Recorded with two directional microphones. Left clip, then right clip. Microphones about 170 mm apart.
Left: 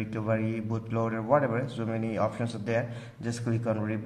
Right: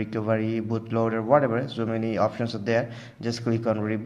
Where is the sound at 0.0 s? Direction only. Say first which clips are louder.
Right 4 dB; 20° right (ahead or behind).